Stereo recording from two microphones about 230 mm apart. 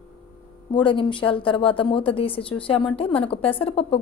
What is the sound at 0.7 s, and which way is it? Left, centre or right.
A woman's voice, left.